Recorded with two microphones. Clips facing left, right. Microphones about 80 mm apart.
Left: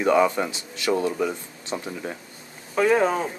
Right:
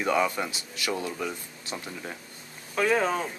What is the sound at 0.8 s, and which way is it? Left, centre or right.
Speech, left.